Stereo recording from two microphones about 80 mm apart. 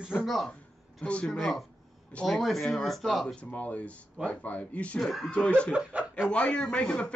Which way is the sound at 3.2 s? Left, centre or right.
Centre.